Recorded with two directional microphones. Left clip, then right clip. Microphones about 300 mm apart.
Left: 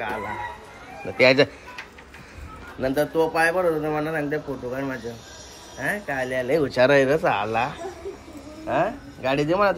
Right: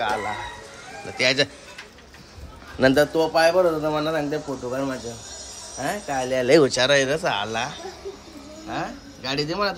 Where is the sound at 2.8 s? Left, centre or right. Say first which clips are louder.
Right 6 dB; right.